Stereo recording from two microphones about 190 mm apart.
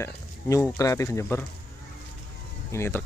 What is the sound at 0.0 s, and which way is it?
Speech, 15° left (ahead or behind).